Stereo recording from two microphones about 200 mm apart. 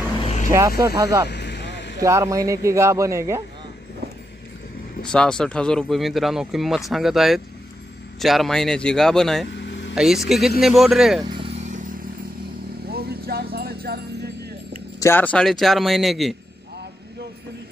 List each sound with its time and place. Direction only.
0.5 s speech: 15° right (ahead or behind)
1.3 s vehicle: 55° left (ahead or behind)
2.0 s speech: 15° right (ahead or behind)
5.0 s speech: 5° left (ahead or behind)
9.5 s vehicle: 60° left (ahead or behind)
9.9 s speech: centre (ahead or behind)
11.3 s vehicle: 30° right (ahead or behind)
12.9 s music: 50° right (ahead or behind)
15.0 s speech: 10° left (ahead or behind)